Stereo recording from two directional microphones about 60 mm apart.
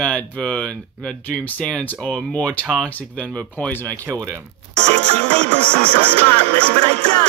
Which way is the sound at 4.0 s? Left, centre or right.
Right.